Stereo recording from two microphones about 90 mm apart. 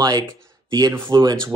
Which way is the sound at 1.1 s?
65° right (ahead or behind).